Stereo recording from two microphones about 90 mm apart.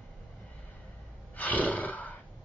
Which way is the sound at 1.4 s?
15° left (ahead or behind).